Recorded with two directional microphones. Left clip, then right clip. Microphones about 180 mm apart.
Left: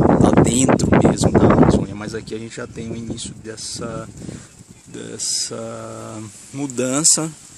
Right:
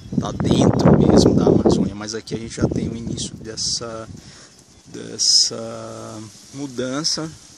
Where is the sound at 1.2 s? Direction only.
5° right (ahead or behind).